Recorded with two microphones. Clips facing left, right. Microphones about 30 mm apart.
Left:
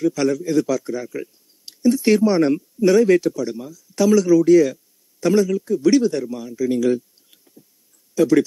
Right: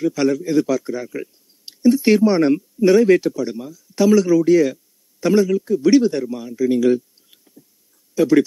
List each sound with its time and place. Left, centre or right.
0.0 s a man's voice: centre